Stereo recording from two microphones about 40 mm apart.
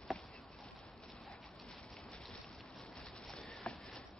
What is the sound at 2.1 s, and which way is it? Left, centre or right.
Boat, left.